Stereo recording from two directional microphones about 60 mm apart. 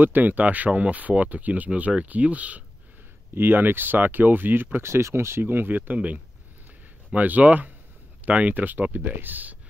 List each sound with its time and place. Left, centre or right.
0.0 s speech: right
3.3 s speech: right
4.7 s speech: right
7.2 s speech: right